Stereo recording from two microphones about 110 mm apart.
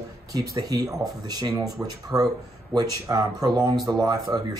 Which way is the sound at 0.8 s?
5° right (ahead or behind).